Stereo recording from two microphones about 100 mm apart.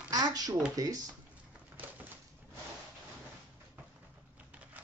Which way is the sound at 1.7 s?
15° right (ahead or behind).